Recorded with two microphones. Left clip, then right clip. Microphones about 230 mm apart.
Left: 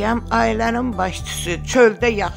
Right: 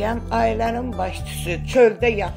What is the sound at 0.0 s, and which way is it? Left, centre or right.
Speech, left.